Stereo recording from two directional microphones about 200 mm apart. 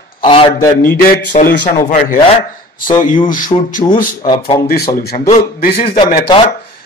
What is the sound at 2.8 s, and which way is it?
Speech, 40° left (ahead or behind).